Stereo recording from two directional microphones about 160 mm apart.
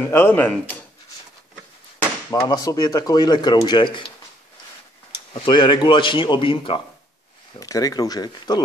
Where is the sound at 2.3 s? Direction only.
25° left (ahead or behind).